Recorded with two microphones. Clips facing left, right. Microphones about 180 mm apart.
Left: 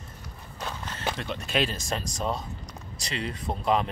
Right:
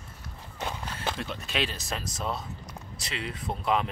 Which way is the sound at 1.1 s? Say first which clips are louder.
Left 4 dB; centre (ahead or behind).